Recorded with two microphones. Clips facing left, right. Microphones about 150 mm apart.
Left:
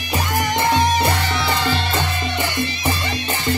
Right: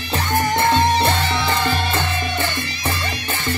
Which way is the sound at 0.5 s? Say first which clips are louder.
Even; 15° left (ahead or behind).